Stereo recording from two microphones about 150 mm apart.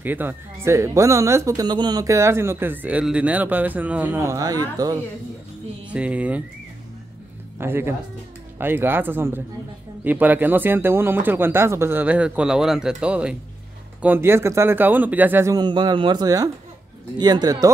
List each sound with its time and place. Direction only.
0.0 s speech: 15° right (ahead or behind)
5.9 s speech: 10° right (ahead or behind)
7.5 s speech: 15° right (ahead or behind)
15.5 s speech: 30° right (ahead or behind)